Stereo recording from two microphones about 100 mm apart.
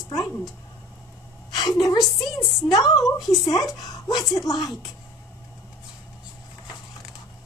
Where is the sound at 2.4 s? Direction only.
35° left (ahead or behind).